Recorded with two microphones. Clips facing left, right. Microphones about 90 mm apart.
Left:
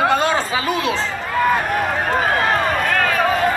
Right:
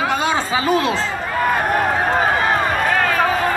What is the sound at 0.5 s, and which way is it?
Speech, 30° right (ahead or behind).